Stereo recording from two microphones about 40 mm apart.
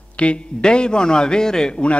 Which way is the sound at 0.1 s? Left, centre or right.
Left.